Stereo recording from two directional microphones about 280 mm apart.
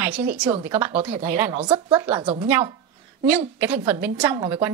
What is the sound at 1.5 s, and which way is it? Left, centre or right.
Speech, centre.